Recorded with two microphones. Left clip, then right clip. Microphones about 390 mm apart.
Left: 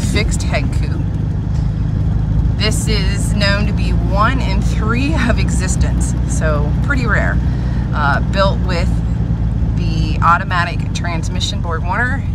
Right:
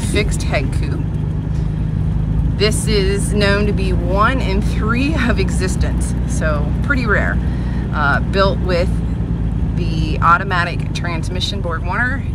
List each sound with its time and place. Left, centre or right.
0.1 s speech: centre
2.6 s speech: centre
8.0 s speech: centre
10.2 s speech: centre